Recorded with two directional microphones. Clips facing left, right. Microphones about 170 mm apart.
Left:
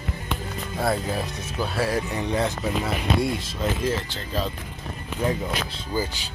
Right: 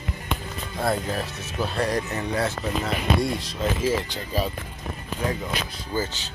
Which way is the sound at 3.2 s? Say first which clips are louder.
Even; centre (ahead or behind).